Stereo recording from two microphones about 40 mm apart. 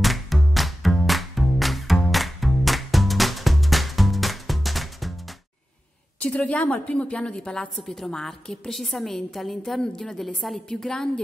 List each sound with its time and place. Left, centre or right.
0.0 s music: centre
6.1 s a woman's voice: left
7.7 s a woman's voice: centre